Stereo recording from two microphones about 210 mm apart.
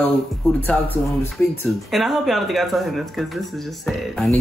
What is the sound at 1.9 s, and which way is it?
Speech, centre (ahead or behind).